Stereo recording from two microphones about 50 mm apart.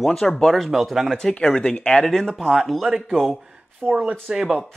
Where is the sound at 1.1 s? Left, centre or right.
Centre.